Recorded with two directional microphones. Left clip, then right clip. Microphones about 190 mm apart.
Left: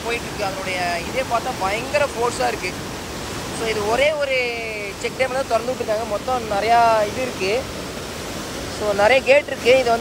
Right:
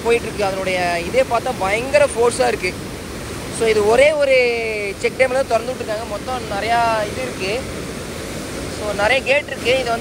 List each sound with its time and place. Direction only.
0.1 s speech: 5° left (ahead or behind)
6.5 s speech: 30° left (ahead or behind)
8.9 s speech: 25° left (ahead or behind)